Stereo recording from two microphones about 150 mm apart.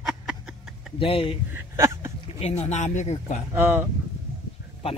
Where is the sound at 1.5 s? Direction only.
20° right (ahead or behind).